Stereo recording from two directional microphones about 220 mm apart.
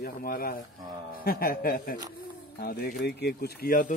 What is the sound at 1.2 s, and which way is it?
Speech, 40° left (ahead or behind).